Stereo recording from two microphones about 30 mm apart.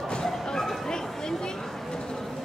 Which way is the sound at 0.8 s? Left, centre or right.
Left.